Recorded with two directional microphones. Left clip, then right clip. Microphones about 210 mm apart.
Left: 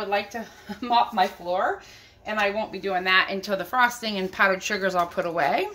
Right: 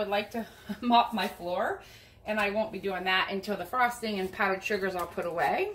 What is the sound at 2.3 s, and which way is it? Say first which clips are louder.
A woman's voice: left 4 dB; 35° left (ahead or behind).